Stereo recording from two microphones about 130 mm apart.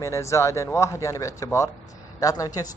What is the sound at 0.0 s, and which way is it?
A man's voice, 25° left (ahead or behind).